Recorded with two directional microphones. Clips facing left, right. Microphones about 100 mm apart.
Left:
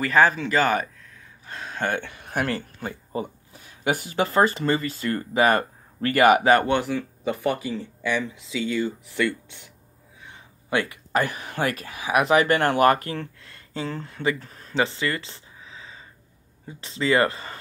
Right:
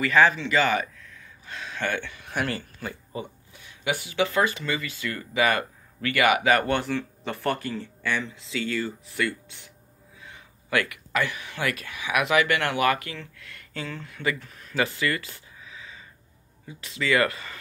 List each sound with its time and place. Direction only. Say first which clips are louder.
0.0 s speech: left 1 dB; 40° left (ahead or behind)
6.7 s speech: left 2 dB; 10° left (ahead or behind)
10.7 s speech: left 2 dB; 30° left (ahead or behind); by 13.5 s 45° left (ahead or behind)
13.5 s speech: left 3 dB; 30° left (ahead or behind)